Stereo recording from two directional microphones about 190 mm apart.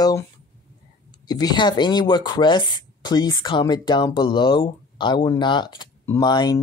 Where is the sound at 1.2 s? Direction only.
20° left (ahead or behind).